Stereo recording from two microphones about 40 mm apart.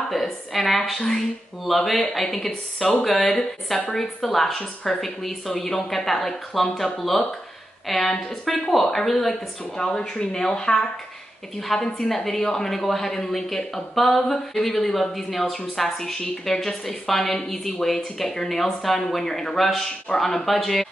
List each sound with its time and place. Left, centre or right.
0.5 s a woman's voice: centre
9.8 s a woman's voice: centre
11.5 s a woman's voice: centre